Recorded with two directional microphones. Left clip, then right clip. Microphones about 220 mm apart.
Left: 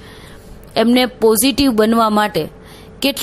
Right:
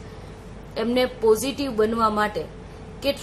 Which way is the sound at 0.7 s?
40° left (ahead or behind).